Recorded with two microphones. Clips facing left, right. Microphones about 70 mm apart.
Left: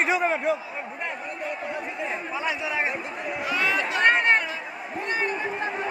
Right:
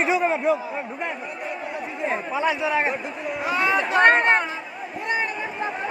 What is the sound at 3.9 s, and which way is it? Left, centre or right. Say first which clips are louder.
Chatter: right 4 dB; right.